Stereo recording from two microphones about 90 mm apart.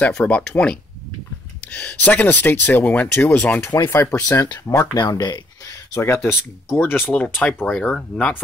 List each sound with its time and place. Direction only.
0.0 s speech: 15° left (ahead or behind)
4.1 s speech: 35° left (ahead or behind)
4.9 s speech: 50° left (ahead or behind)
5.9 s speech: 30° left (ahead or behind); by 8.3 s 10° left (ahead or behind)